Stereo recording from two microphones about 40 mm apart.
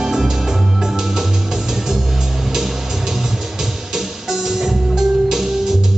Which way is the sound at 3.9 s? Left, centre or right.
Centre.